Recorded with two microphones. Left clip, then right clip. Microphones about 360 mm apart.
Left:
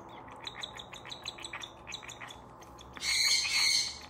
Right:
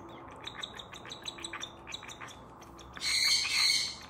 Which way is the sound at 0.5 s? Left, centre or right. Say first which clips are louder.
Even; centre.